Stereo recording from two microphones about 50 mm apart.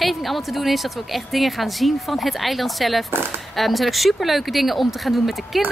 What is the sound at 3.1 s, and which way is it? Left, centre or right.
Speech, right.